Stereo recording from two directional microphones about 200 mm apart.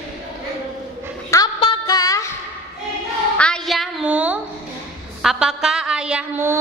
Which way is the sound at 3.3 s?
5° left (ahead or behind).